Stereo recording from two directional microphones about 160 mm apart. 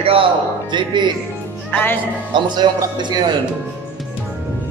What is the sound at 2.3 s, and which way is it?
Speech, 30° right (ahead or behind).